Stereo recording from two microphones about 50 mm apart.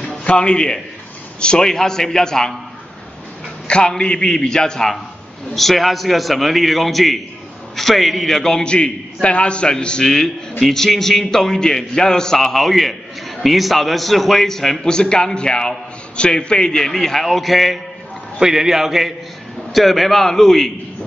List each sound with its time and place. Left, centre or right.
0.2 s a man's voice: left
3.6 s a man's voice: centre
8.6 s a man's voice: centre
18.4 s a man's voice: centre